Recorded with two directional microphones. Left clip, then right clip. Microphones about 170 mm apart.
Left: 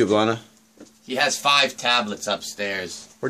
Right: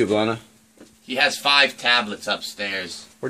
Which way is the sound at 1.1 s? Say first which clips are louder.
Right 1 dB; 35° left (ahead or behind).